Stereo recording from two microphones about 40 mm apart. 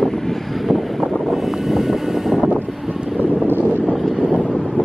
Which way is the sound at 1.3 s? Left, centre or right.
Centre.